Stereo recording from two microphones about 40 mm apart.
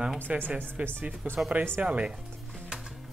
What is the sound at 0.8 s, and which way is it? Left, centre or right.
Speech, right.